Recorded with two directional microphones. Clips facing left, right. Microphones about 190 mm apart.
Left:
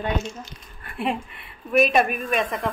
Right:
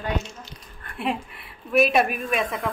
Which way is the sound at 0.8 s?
5° left (ahead or behind).